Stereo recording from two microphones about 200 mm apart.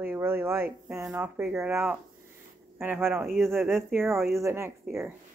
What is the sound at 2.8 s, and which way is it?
Speech, 10° right (ahead or behind).